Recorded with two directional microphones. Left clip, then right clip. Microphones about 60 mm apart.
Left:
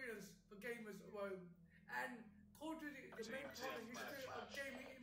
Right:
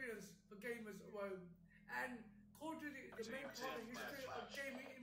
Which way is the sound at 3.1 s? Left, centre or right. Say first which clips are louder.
Even; centre.